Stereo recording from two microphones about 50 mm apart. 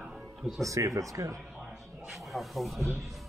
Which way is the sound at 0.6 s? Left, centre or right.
Right.